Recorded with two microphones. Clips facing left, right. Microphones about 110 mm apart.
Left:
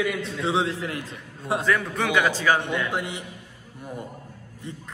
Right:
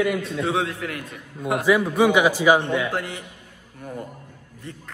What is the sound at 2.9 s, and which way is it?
A man's voice, 20° left (ahead or behind).